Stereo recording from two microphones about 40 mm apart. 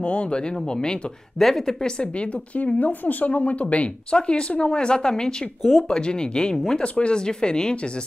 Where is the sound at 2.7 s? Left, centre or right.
Left.